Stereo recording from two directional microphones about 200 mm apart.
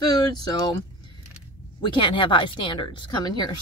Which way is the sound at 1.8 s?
25° left (ahead or behind).